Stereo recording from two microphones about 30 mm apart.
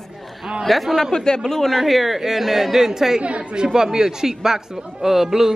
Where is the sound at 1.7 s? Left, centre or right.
Centre.